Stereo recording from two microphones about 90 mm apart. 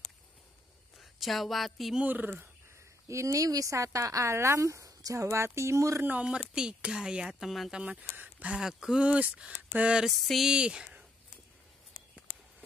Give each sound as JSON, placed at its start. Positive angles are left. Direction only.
{"t": 0.9, "sound": "speech", "side_deg": 0}
{"t": 2.0, "sound": "speech", "side_deg": -20}
{"t": 3.1, "sound": "speech", "side_deg": -35}
{"t": 6.0, "sound": "speech", "side_deg": -15}
{"t": 7.8, "sound": "speech", "side_deg": -15}
{"t": 10.2, "sound": "speech", "side_deg": 0}
{"t": 10.5, "sound": "speech", "side_deg": -10}